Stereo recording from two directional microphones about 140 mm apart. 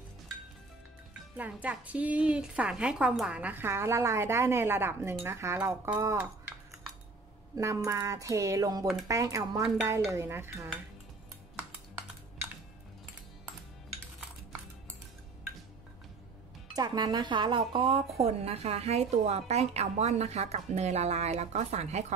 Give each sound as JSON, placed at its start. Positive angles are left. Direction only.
{"t": 1.3, "sound": "a woman's voice", "side_deg": -10}
{"t": 7.5, "sound": "a sound", "side_deg": -20}
{"t": 10.1, "sound": "a woman's voice", "side_deg": -20}
{"t": 16.7, "sound": "speech", "side_deg": -30}